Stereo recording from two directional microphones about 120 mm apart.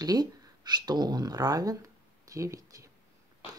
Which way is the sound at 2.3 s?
25° right (ahead or behind).